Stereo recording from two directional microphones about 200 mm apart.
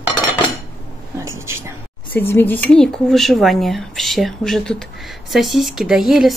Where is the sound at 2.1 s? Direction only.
10° left (ahead or behind).